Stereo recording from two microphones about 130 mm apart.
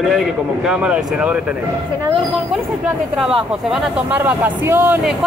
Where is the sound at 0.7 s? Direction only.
5° right (ahead or behind).